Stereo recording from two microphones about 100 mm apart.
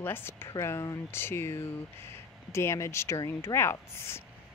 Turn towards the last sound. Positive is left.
turn(degrees=25)  # may be behind; listen again after turning